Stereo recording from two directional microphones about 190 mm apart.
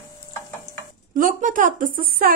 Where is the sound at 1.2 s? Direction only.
45° right (ahead or behind).